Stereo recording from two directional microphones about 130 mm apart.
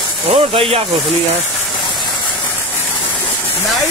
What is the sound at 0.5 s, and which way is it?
Speech, 50° right (ahead or behind).